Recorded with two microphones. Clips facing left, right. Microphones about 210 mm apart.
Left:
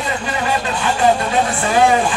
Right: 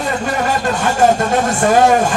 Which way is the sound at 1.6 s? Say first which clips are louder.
Right 4 dB; 45° right (ahead or behind).